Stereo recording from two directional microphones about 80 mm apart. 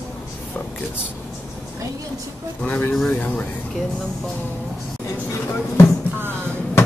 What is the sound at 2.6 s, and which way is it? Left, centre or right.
Speech, centre.